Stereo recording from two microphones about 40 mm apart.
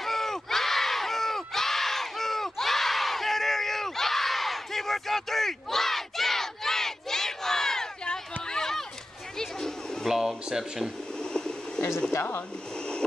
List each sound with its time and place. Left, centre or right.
0.0 s crowd: centre
10.1 s a sound: centre
11.3 s vehicle: left